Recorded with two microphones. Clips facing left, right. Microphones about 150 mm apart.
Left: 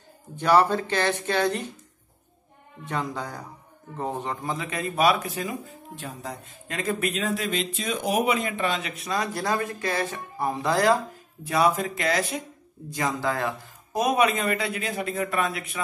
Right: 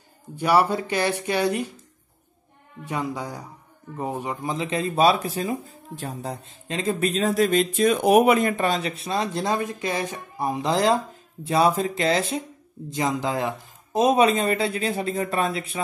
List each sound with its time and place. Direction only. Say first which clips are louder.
0.4 s speech: even; 10° right (ahead or behind)
2.8 s speech: right 2 dB; 10° right (ahead or behind)
4.6 s speech: right 6 dB; 25° right (ahead or behind)